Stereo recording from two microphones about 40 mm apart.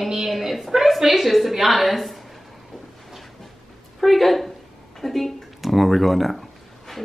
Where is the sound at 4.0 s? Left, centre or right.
Centre.